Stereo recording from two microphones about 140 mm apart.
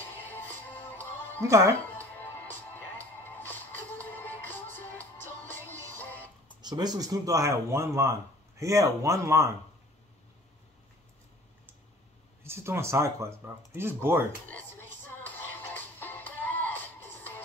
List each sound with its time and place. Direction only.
0.3 s music: 15° left (ahead or behind)
1.4 s speech: 20° right (ahead or behind)
3.3 s music: 15° left (ahead or behind)
6.6 s speech: 30° right (ahead or behind)
12.4 s speech: 20° right (ahead or behind)
15.0 s music: 15° left (ahead or behind)